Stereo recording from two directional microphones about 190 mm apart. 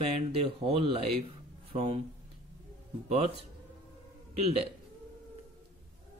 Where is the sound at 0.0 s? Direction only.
30° right (ahead or behind).